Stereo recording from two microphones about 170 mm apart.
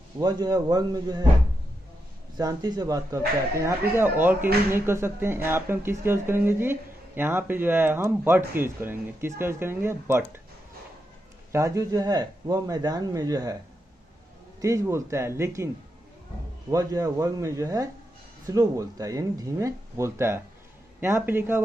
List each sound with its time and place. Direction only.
0.2 s speech: 25° right (ahead or behind)
2.3 s speech: 25° right (ahead or behind)
11.5 s speech: 20° right (ahead or behind)
14.6 s speech: 20° right (ahead or behind)
16.7 s speech: 20° right (ahead or behind)